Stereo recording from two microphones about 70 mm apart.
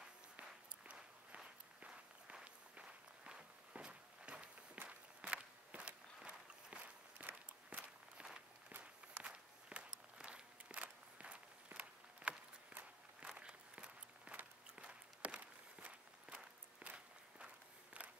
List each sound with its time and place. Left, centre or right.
0.4 s walk: centre
13.4 s a sound: centre
14.8 s walk: centre